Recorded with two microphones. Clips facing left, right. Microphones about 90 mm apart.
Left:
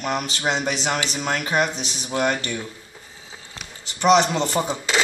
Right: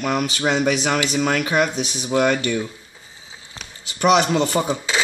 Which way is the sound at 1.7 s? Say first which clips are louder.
Right 5 dB; 10° right (ahead or behind).